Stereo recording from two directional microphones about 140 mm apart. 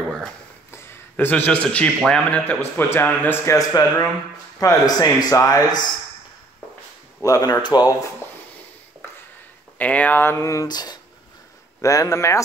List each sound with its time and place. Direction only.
0.7 s a sound: 15° left (ahead or behind)
2.0 s a man's voice: 5° left (ahead or behind); by 5.8 s 25° left (ahead or behind)
7.2 s speech: 25° left (ahead or behind)
9.8 s speech: 10° left (ahead or behind)